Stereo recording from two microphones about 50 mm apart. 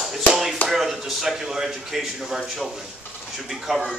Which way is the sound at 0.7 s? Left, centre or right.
Centre.